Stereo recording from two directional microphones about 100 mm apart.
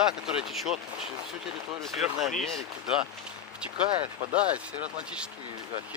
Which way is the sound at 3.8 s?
60° right (ahead or behind).